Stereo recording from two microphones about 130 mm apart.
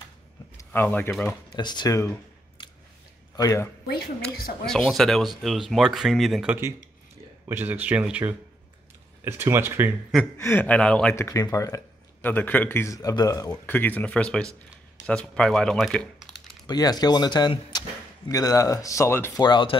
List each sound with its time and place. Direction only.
0.6 s speech: 15° left (ahead or behind)
1.5 s speech: 35° left (ahead or behind)
2.6 s a sound: 40° left (ahead or behind)
3.3 s a man's voice: 25° left (ahead or behind)
4.2 s speech: 5° left (ahead or behind)
7.4 s speech: 15° right (ahead or behind)
10.3 s speech: 20° left (ahead or behind)
11.1 s a man's voice: 20° left (ahead or behind)
12.2 s a man's voice: 15° left (ahead or behind)
13.7 s speech: 15° left (ahead or behind)
16.6 s a man's voice: 30° left (ahead or behind)
19.4 s speech: 40° left (ahead or behind)